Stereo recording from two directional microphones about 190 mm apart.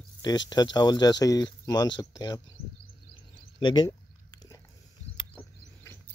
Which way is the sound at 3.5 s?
25° left (ahead or behind).